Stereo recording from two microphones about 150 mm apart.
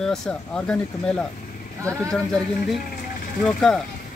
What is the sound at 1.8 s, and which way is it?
Speech, 20° right (ahead or behind).